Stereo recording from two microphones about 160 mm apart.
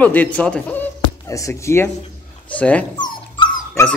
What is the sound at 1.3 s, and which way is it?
Speech, 20° left (ahead or behind).